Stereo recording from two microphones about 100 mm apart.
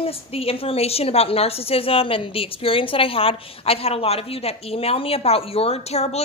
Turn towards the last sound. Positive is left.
turn(degrees=90)